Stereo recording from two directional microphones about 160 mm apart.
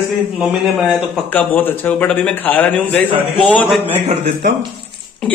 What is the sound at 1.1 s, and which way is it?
A man's voice, 10° left (ahead or behind).